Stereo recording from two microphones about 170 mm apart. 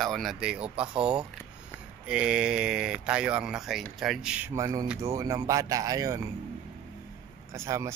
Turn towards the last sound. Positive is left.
turn(degrees=-15)  # may be behind; listen again after turning